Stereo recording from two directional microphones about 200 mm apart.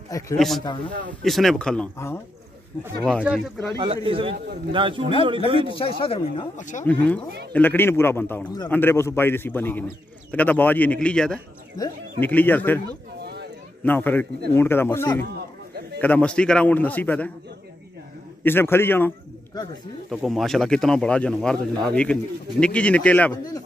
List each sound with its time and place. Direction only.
0.1 s a man's voice: 15° left (ahead or behind)
1.2 s speech: centre (ahead or behind)
3.7 s a man's voice: 25° right (ahead or behind)
5.8 s speech: 30° left (ahead or behind)
6.8 s a man's voice: 10° left (ahead or behind)
13.2 s a sound: 55° right (ahead or behind)
13.8 s a man's voice: 10° left (ahead or behind)
18.4 s a man's voice: 10° left (ahead or behind)
20.1 s a man's voice: centre (ahead or behind)
23.3 s speech: 20° left (ahead or behind)